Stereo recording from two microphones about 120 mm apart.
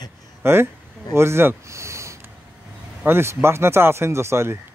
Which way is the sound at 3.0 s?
20° right (ahead or behind).